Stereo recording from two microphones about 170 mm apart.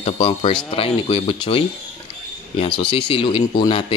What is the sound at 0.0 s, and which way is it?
Speech, 35° left (ahead or behind).